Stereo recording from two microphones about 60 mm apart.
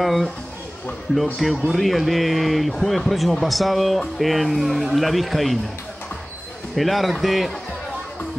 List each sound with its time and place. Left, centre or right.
0.0 s a man's voice: centre
6.7 s a man's voice: centre